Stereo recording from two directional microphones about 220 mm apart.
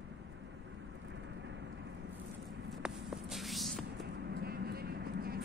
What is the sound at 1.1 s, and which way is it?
Vehicle, 55° right (ahead or behind).